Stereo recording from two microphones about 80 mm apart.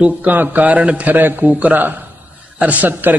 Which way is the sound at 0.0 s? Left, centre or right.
Right.